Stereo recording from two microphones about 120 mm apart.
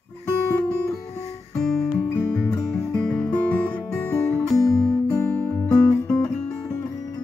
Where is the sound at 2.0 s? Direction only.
15° left (ahead or behind).